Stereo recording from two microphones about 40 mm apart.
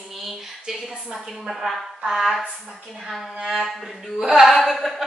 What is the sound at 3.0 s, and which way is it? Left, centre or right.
A woman's voice, centre.